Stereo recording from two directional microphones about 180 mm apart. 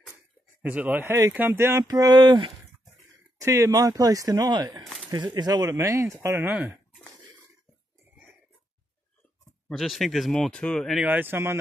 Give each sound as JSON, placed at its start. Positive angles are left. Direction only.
{"t": 0.6, "sound": "speech", "side_deg": -10}
{"t": 9.7, "sound": "speech", "side_deg": 0}